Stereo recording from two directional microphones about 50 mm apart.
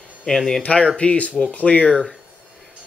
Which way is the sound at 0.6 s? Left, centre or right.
Left.